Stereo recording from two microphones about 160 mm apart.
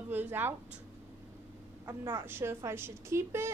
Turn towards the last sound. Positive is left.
turn(degrees=-15)  # may be behind; listen again after turning